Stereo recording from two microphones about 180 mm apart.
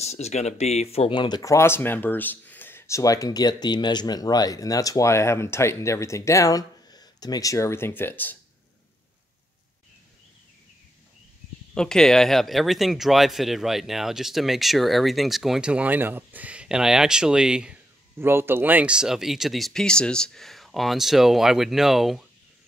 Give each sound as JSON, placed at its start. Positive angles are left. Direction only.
{"t": 0.0, "sound": "speech", "side_deg": 35}
{"t": 11.7, "sound": "speech", "side_deg": 5}